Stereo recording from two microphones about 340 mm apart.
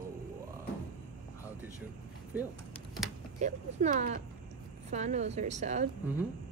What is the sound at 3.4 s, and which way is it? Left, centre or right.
A woman's voice, right.